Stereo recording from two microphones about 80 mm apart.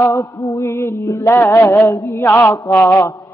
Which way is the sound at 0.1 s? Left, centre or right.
Left.